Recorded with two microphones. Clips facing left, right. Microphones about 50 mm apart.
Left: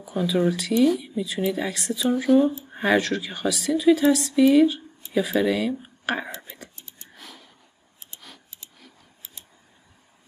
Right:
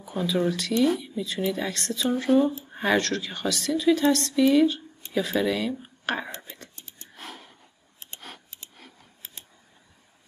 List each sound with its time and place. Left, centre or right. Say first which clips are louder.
0.0 s a woman's voice: left 3 dB; centre
7.2 s a sound: right 4 dB; right
8.0 s scissors: right 4 dB; right